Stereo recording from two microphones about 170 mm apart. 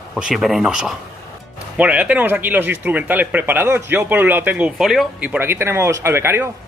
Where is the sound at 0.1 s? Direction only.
5° right (ahead or behind).